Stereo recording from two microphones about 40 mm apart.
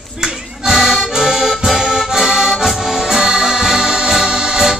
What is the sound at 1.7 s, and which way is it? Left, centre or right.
Accordion, centre.